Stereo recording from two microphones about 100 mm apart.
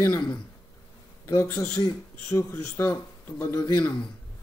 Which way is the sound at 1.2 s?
30° left (ahead or behind).